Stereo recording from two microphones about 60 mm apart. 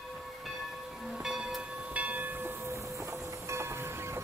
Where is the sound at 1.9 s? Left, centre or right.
Right.